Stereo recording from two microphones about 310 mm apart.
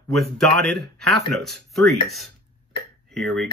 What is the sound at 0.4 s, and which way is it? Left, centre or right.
Speech, centre.